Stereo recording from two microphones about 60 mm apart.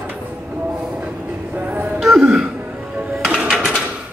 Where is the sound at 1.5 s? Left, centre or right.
Right.